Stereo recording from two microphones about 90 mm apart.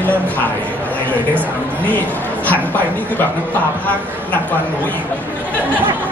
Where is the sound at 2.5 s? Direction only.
20° left (ahead or behind).